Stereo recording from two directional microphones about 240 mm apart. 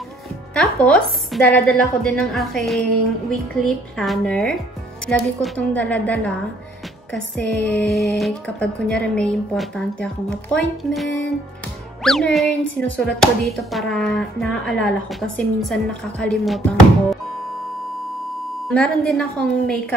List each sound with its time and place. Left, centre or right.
0.6 s speech: centre
18.7 s speech: centre